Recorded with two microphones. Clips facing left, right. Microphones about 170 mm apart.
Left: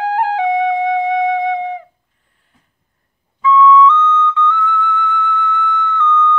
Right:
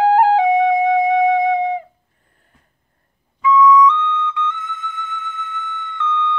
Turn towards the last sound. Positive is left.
turn(degrees=-20)  # may be behind; listen again after turning